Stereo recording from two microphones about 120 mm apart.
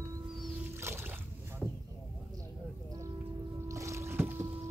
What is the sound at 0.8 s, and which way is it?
Boat, 20° right (ahead or behind).